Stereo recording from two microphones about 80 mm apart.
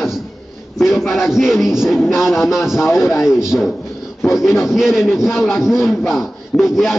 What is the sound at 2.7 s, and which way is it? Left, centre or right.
Speech, left.